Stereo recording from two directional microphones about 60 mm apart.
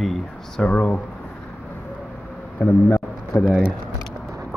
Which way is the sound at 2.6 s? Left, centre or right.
Left.